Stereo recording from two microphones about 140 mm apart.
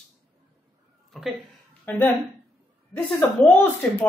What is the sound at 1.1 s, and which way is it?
Speech, centre (ahead or behind).